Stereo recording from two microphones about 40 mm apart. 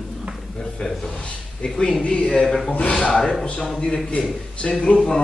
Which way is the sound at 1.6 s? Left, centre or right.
Left.